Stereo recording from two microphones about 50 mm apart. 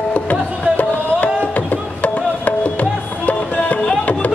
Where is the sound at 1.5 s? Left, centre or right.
Left.